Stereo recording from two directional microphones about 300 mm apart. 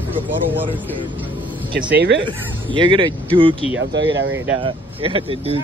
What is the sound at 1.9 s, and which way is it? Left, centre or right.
Speech, right.